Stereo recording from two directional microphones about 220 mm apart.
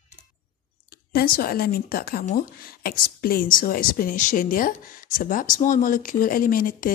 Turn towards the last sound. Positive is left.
turn(degrees=40)  # may be behind; listen again after turning